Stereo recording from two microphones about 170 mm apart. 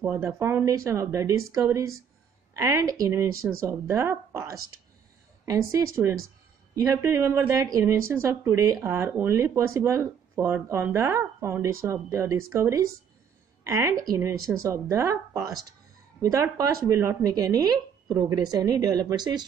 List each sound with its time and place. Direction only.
0.0 s speech: 15° right (ahead or behind)